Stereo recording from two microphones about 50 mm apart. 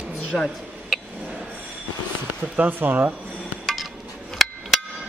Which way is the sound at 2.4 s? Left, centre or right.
Right.